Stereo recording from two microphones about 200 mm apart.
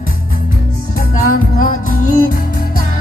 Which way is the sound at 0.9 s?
45° left (ahead or behind).